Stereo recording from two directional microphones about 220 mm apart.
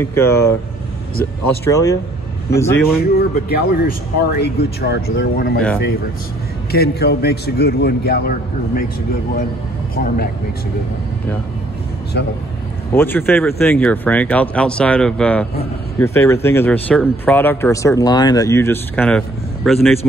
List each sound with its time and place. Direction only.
0.0 s speech: 10° left (ahead or behind)
3.0 s speech: 45° left (ahead or behind)
6.7 s speech: 45° left (ahead or behind)
9.9 s speech: 40° left (ahead or behind)
12.9 s speech: 10° left (ahead or behind)